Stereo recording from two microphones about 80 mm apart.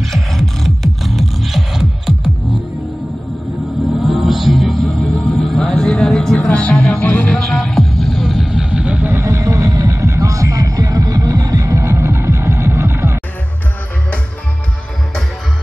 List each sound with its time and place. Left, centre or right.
0.0 s music: centre
4.0 s music: centre; by 7.3 s left
7.3 s music: centre; by 9.2 s right
9.2 s music: right